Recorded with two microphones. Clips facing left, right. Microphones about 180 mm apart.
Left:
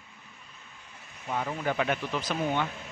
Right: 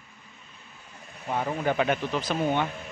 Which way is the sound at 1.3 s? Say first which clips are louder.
Right 3 dB; 35° right (ahead or behind).